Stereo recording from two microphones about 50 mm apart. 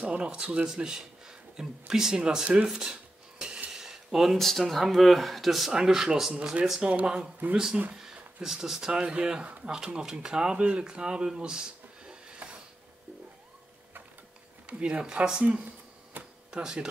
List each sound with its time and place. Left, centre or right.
0.0 s speech: right
2.7 s dishes: centre
3.7 s speech: centre
6.8 s speech: right
14.7 s speech: right
15.4 s a sound: right
16.4 s speech: centre